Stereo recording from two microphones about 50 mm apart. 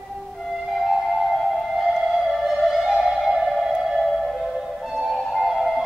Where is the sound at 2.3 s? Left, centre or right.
Centre.